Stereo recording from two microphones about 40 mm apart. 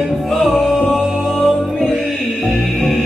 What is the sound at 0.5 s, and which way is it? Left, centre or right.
Singing, centre.